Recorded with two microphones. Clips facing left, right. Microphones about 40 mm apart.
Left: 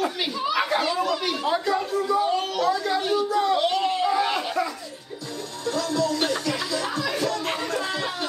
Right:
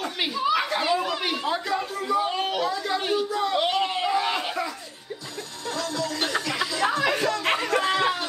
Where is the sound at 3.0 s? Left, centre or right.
Centre.